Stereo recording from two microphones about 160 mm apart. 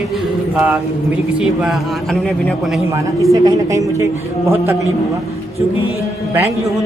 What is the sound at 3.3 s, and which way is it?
Speech, 20° right (ahead or behind).